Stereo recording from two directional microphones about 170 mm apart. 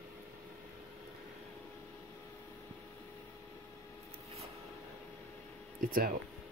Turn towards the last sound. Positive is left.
turn(degrees=-55)  # may be behind; listen again after turning